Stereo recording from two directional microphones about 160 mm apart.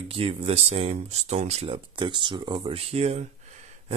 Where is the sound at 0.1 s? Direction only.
35° right (ahead or behind).